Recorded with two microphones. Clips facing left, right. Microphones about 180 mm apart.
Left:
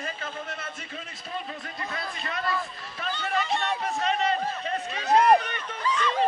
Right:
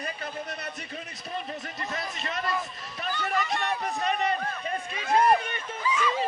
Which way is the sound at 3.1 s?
20° left (ahead or behind).